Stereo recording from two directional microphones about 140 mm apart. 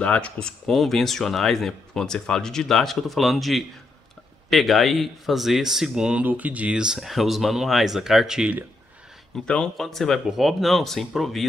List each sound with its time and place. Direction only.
0.0 s speech: 10° left (ahead or behind); by 8.6 s 10° right (ahead or behind)
9.5 s speech: 5° left (ahead or behind)